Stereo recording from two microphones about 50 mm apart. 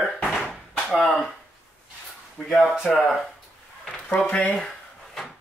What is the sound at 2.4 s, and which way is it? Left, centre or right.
Speech, centre.